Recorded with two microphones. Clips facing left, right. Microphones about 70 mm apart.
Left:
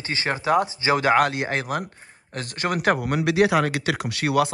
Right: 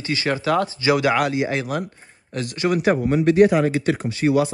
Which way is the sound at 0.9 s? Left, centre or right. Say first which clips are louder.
Right 1 dB; left.